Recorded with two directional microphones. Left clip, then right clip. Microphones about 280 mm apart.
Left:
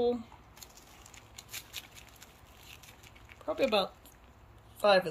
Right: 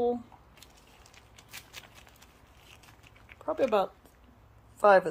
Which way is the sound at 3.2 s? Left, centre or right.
Centre.